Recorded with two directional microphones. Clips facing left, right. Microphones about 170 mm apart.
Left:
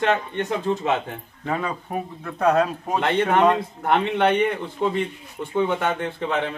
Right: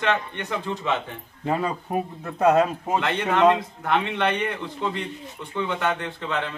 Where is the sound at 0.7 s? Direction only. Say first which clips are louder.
Left 7 dB; 45° left (ahead or behind).